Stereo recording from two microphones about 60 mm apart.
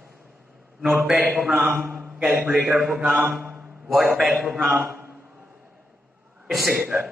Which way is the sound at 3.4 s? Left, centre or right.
Right.